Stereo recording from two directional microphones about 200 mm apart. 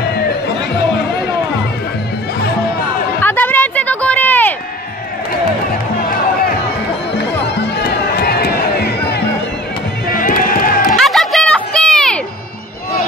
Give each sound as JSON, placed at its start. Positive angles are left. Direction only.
{"t": 3.2, "sound": "music", "side_deg": 10}
{"t": 5.9, "sound": "music", "side_deg": 50}
{"t": 10.9, "sound": "music", "side_deg": 0}